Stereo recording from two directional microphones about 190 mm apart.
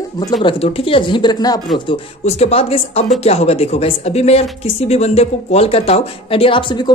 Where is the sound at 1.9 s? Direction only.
35° left (ahead or behind).